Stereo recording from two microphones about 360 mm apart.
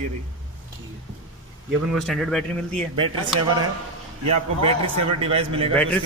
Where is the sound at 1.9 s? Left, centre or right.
Centre.